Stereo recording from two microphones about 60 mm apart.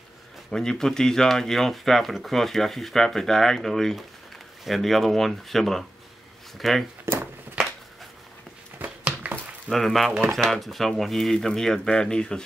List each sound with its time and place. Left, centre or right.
0.5 s speech: centre
8.7 s a sound: right
9.7 s speech: centre